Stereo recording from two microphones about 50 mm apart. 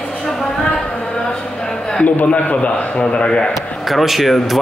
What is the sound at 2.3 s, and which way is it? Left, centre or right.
A man's voice, left.